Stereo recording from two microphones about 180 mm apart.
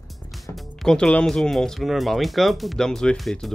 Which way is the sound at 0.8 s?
5° left (ahead or behind).